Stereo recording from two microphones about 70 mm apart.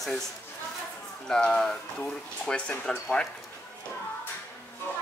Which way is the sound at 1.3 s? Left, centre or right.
Centre.